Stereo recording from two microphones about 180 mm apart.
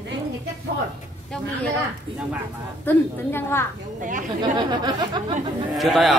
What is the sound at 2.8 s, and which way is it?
Speech, 10° left (ahead or behind).